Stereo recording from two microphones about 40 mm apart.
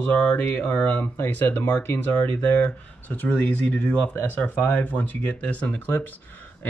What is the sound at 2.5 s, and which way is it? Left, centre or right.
Speech, left.